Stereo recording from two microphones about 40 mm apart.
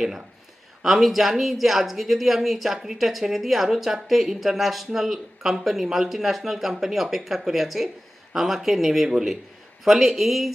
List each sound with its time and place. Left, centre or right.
0.8 s speech: centre